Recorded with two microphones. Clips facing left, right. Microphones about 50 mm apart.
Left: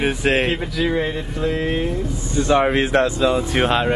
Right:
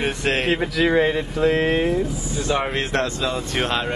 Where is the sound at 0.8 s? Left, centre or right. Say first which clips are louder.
Right 3 dB; centre.